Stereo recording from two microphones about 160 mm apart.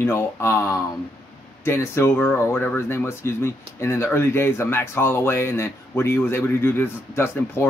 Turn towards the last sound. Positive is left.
turn(degrees=15)  # may be behind; listen again after turning